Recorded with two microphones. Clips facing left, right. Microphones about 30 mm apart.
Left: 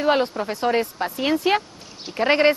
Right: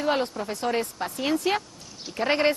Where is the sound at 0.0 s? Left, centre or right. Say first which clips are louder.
Left 5 dB; left.